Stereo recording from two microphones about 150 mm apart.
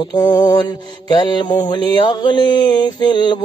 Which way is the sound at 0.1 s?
25° left (ahead or behind).